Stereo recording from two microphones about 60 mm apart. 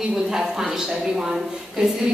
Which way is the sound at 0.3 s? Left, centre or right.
Centre.